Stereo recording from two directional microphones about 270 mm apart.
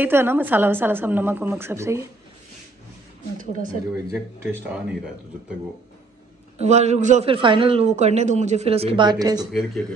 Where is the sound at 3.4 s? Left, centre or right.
Right.